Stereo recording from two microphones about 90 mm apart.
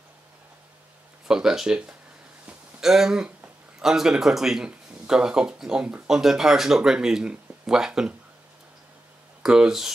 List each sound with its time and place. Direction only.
1.2 s speech: 5° right (ahead or behind)
9.4 s speech: 5° right (ahead or behind)